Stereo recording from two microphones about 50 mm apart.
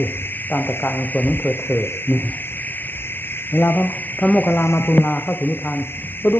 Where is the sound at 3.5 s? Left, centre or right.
Left.